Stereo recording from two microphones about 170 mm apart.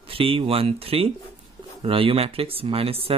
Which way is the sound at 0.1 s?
35° right (ahead or behind).